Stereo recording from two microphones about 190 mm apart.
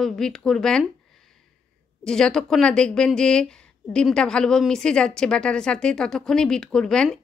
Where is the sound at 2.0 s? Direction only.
5° left (ahead or behind).